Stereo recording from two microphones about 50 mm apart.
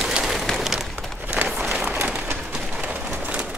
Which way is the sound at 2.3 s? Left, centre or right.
Centre.